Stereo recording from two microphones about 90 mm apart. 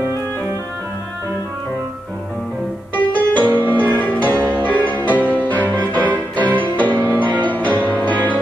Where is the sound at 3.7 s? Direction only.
20° left (ahead or behind).